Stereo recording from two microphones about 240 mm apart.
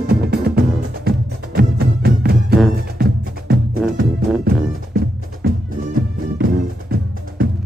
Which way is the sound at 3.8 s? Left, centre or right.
Centre.